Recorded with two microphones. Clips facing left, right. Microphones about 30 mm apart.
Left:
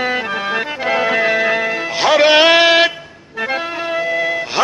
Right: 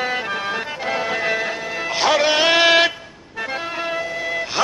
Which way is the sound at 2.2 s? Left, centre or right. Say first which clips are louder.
Left 10 dB; left.